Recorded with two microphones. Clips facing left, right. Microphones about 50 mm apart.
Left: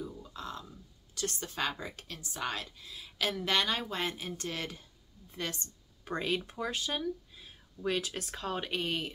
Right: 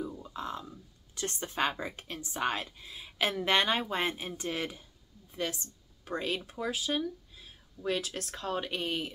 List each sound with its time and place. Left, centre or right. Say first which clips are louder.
0.0 s speech: right 4 dB; right
5.3 s speech: right 3 dB; centre